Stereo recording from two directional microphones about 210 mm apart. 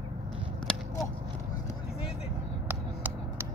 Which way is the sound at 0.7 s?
5° left (ahead or behind).